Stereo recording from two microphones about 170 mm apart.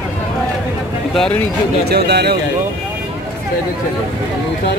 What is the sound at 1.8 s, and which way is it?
Speech, 75° right (ahead or behind).